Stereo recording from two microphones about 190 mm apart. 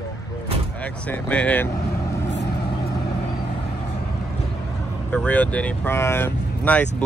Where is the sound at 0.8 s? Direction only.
10° left (ahead or behind).